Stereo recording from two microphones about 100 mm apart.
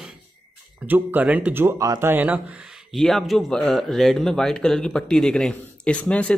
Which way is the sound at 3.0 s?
Centre (ahead or behind).